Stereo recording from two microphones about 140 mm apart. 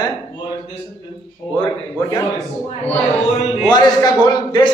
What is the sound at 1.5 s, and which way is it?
Speech, 30° left (ahead or behind).